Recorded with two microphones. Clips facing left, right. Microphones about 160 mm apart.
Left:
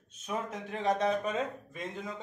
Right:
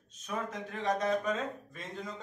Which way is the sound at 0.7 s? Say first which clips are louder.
Left 2 dB; 30° left (ahead or behind).